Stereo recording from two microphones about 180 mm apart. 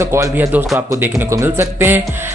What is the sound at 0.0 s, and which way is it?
Speech, 15° right (ahead or behind).